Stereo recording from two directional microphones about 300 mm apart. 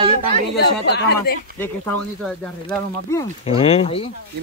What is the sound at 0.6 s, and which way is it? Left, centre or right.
Speech, left.